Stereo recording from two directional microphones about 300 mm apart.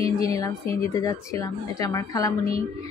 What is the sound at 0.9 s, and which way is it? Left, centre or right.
Speech, centre.